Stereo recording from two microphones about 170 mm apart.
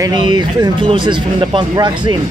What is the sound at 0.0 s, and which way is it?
Speech, 25° right (ahead or behind).